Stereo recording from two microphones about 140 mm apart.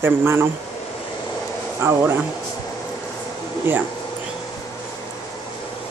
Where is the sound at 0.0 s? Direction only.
15° right (ahead or behind).